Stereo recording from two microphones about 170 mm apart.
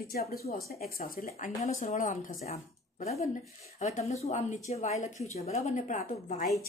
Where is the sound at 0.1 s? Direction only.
60° left (ahead or behind).